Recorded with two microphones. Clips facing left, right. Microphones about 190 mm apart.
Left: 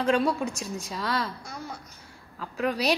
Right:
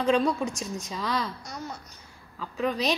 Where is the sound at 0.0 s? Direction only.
5° left (ahead or behind).